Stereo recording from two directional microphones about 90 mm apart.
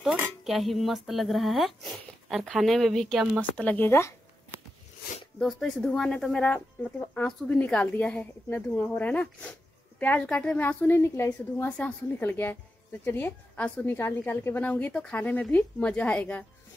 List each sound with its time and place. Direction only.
0.4 s speech: centre (ahead or behind)
3.5 s a woman's voice: 20° left (ahead or behind)
5.4 s a woman's voice: 5° left (ahead or behind); by 11.0 s 20° left (ahead or behind)
11.0 s a woman's voice: 35° left (ahead or behind)
13.9 s a woman's voice: 30° left (ahead or behind)
14.6 s speech: 15° left (ahead or behind)